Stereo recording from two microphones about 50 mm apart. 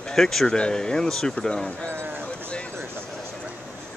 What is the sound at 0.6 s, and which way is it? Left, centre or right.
Speech, centre.